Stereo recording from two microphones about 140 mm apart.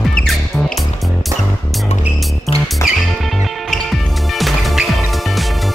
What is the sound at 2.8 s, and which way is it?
Music, 20° left (ahead or behind).